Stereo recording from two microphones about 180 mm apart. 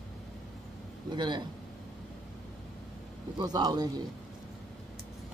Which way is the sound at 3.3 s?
20° right (ahead or behind).